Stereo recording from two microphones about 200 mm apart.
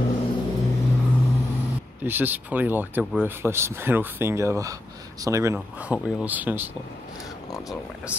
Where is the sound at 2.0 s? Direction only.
10° right (ahead or behind).